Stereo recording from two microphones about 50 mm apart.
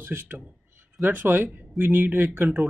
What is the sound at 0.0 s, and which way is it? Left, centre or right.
Speech, right.